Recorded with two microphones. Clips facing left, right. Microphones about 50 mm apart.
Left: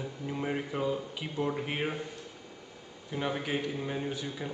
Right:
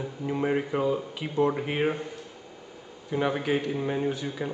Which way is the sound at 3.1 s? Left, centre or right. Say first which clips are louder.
Right 6 dB; centre.